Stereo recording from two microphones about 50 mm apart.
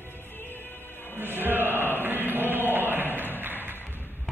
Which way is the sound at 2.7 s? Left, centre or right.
Right.